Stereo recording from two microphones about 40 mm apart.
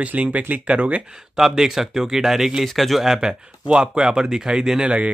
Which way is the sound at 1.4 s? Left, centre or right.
Centre.